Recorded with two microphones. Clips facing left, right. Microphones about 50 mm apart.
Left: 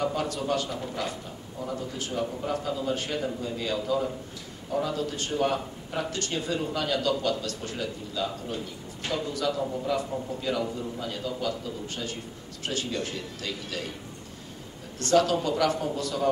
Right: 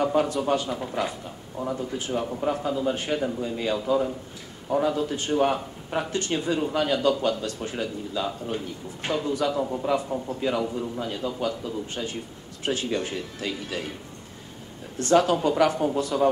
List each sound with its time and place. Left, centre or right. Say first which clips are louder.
0.0 s speech: right 6 dB; right
1.6 s speech: right 4 dB; right
15.0 s speech: right 2 dB; right